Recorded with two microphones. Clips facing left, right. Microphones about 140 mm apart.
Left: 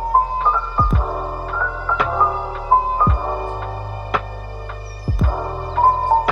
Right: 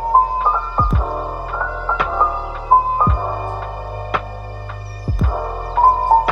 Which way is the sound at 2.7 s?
15° right (ahead or behind).